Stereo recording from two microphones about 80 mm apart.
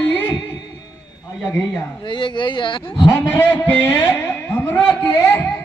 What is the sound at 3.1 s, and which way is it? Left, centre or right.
A man's voice, left.